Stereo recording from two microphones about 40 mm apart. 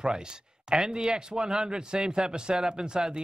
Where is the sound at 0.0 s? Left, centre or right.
Centre.